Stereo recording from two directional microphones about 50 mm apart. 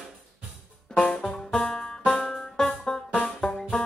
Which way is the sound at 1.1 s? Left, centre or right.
Centre.